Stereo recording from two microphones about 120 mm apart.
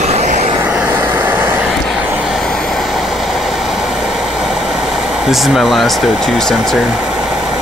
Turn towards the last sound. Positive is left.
turn(degrees=0)  # may be behind; listen again after turning